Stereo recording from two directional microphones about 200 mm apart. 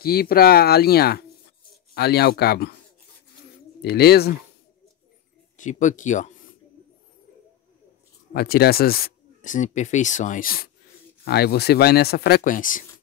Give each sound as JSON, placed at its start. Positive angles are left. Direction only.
{"t": 0.0, "sound": "speech", "side_deg": 50}
{"t": 3.8, "sound": "speech", "side_deg": 50}
{"t": 5.6, "sound": "speech", "side_deg": 40}
{"t": 8.3, "sound": "speech", "side_deg": 50}